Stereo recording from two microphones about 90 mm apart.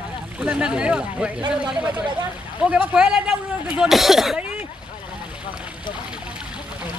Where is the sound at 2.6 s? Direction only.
10° right (ahead or behind).